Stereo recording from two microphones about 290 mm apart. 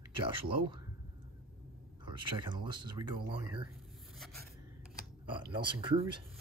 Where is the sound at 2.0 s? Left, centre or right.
Centre.